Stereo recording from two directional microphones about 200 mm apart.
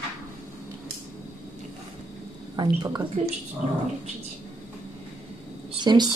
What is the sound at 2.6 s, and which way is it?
Speech, 20° right (ahead or behind).